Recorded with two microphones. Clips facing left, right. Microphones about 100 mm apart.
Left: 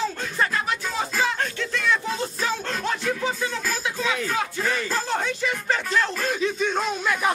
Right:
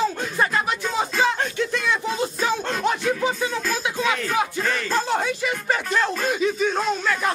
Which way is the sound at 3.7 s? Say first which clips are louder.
Right 3 dB; 15° right (ahead or behind).